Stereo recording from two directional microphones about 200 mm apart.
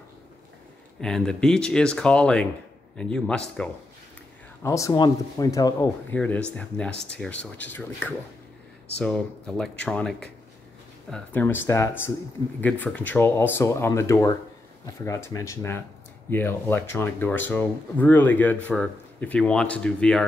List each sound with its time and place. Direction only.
1.0 s speech: 5° left (ahead or behind)
4.6 s speech: 15° left (ahead or behind)